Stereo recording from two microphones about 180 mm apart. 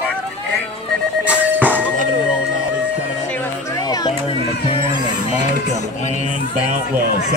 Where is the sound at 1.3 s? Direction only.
10° right (ahead or behind).